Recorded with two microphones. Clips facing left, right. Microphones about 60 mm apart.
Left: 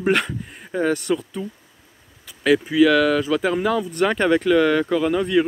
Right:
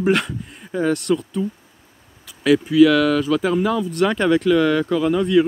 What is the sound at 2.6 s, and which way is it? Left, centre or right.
Speech, centre.